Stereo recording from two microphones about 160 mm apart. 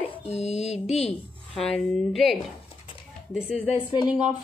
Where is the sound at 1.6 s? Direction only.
5° left (ahead or behind).